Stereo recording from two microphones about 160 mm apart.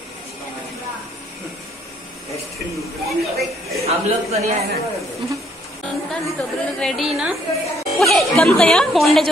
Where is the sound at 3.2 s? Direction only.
Centre (ahead or behind).